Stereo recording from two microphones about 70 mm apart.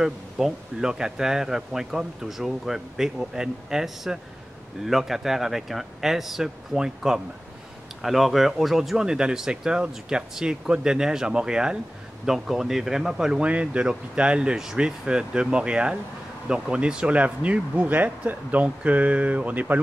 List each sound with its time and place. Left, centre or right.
0.0 s speech: centre